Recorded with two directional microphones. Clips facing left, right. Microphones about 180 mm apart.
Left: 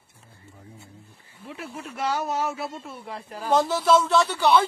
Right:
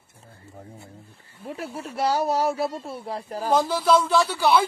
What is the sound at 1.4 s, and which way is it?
Speech, 40° right (ahead or behind).